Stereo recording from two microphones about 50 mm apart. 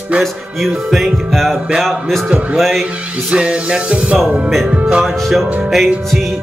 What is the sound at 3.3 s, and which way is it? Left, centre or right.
Music, right.